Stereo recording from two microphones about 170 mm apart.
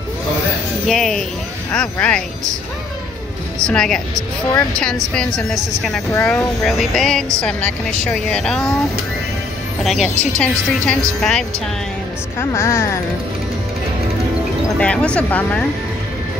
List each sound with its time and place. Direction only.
0.8 s a woman's voice: centre (ahead or behind)
3.6 s a woman's voice: 5° left (ahead or behind)
5.1 s a woman's voice: 5° left (ahead or behind)
9.8 s a woman's voice: centre (ahead or behind)
12.4 s speech: 15° left (ahead or behind)
14.8 s speech: 5° left (ahead or behind)